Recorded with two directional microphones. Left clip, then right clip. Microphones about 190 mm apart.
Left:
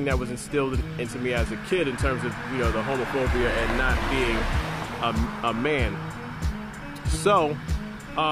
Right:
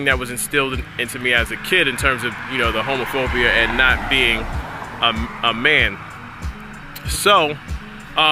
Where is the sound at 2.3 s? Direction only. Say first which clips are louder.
Right 6 dB; 40° left (ahead or behind).